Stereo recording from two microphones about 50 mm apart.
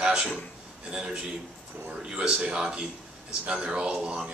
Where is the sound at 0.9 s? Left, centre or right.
Centre.